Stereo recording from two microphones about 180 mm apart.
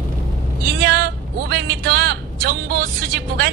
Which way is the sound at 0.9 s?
55° right (ahead or behind).